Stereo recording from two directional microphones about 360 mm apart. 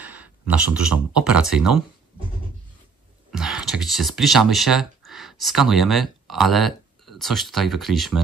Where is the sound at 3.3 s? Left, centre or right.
Centre.